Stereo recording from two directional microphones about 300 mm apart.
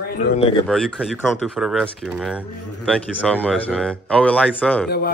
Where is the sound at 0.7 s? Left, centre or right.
Centre.